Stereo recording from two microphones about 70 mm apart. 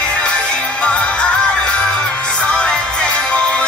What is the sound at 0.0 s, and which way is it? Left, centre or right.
Music, centre.